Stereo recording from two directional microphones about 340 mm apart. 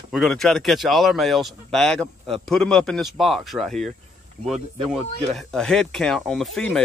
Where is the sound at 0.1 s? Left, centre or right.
Centre.